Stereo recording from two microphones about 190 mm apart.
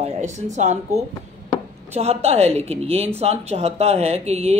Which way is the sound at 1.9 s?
35° right (ahead or behind).